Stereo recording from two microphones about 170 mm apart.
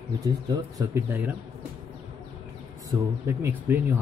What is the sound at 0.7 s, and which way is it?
Speech, 15° right (ahead or behind).